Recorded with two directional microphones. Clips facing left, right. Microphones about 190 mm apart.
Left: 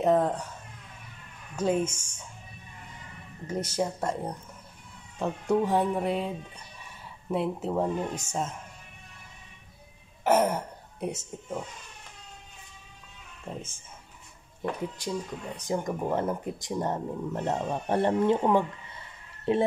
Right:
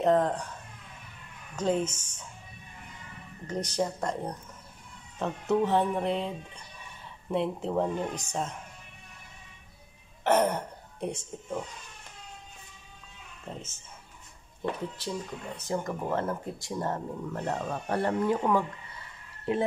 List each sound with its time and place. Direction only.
0.0 s speech: 10° left (ahead or behind)
1.6 s speech: 10° left (ahead or behind)
3.4 s speech: 5° left (ahead or behind)
10.2 s speech: 5° left (ahead or behind)
13.5 s speech: 10° left (ahead or behind)
15.0 s speech: 15° left (ahead or behind)